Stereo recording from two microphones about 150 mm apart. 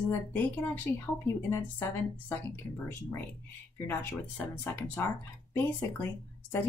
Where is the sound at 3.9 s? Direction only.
10° left (ahead or behind).